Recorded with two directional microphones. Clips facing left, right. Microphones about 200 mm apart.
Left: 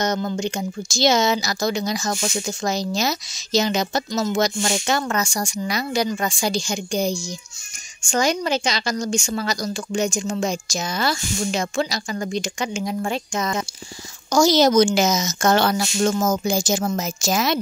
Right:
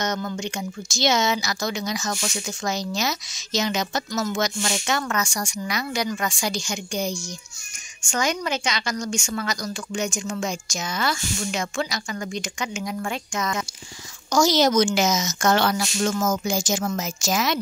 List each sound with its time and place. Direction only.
0.0 s speech: 30° left (ahead or behind)